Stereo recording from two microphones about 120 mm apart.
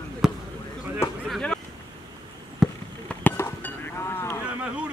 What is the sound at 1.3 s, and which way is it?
Speech, 5° left (ahead or behind).